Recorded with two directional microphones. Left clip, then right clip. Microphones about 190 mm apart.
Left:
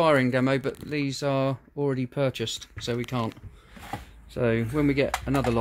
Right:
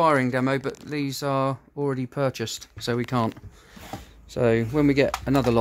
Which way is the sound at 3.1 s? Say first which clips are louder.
Right 5 dB; 25° right (ahead or behind).